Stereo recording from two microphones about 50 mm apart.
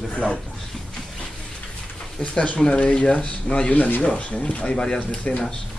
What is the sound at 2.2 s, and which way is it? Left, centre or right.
Speech, left.